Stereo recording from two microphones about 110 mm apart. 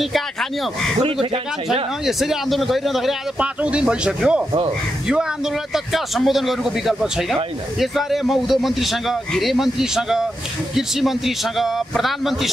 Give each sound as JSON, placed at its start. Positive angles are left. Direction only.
{"t": 1.7, "sound": "speech", "side_deg": -5}
{"t": 5.9, "sound": "speech", "side_deg": 0}